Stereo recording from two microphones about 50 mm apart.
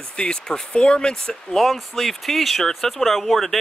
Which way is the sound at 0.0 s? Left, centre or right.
Centre.